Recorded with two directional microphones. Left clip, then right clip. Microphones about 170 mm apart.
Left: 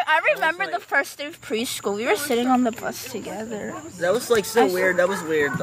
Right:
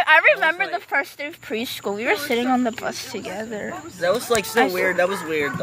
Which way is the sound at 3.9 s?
60° left (ahead or behind).